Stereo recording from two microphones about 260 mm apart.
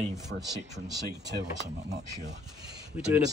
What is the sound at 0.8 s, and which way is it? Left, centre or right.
Speech, centre.